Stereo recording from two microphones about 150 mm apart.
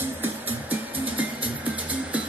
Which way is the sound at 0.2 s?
10° right (ahead or behind).